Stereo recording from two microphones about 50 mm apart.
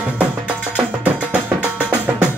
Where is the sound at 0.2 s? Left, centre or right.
Right.